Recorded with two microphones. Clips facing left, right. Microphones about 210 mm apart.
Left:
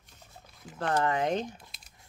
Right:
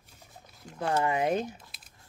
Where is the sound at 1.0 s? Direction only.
10° right (ahead or behind).